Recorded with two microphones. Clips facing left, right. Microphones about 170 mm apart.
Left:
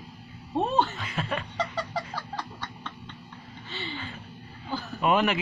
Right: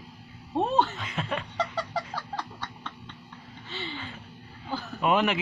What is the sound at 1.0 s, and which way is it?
Speech, 25° right (ahead or behind).